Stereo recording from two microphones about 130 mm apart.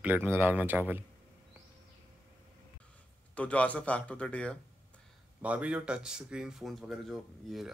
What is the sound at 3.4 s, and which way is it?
Speech, 10° left (ahead or behind).